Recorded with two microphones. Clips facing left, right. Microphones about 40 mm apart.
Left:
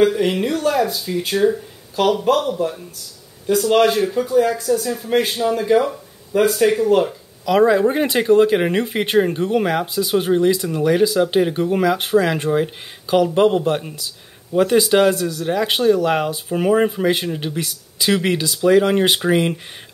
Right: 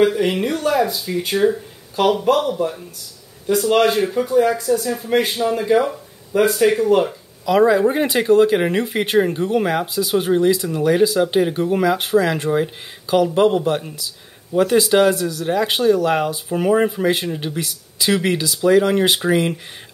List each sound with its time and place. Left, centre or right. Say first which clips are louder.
0.2 s speech: left 1 dB; centre
2.2 s speech: even; centre
3.4 s speech: left 1 dB; centre
7.4 s speech: even; centre